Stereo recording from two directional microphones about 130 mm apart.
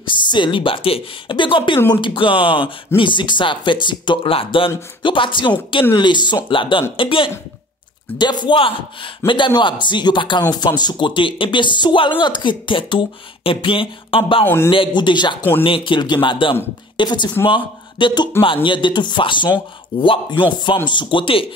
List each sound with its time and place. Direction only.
0.0 s speech: 35° left (ahead or behind)
14.4 s a man's voice: 20° left (ahead or behind)
14.7 s a woman's voice: 40° left (ahead or behind)